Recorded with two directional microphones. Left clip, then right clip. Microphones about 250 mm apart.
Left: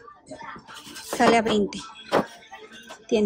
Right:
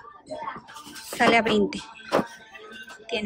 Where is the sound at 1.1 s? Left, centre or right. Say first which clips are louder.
Even; centre.